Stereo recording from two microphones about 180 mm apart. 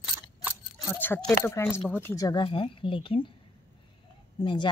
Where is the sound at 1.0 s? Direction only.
10° left (ahead or behind); by 3.3 s 30° left (ahead or behind).